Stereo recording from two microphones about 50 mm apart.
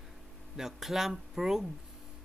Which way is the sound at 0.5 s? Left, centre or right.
Centre.